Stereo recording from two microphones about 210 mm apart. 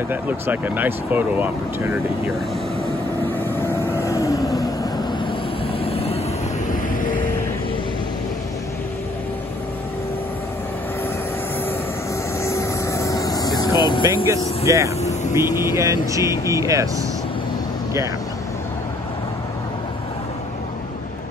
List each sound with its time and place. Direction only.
0.1 s speech: 10° right (ahead or behind)
3.5 s vehicle: 10° left (ahead or behind)
5.7 s vehicle: 25° left (ahead or behind)
12.4 s vehicle: 15° left (ahead or behind)
14.2 s speech: 15° right (ahead or behind)